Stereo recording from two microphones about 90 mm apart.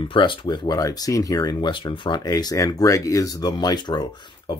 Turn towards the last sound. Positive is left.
turn(degrees=50)  # may be behind; listen again after turning